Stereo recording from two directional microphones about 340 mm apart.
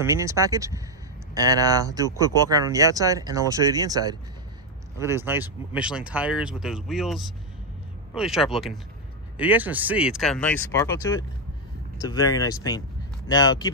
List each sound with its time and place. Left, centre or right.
0.0 s speech: centre